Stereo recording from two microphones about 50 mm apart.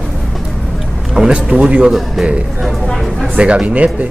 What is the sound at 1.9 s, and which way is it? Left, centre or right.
Speech, centre.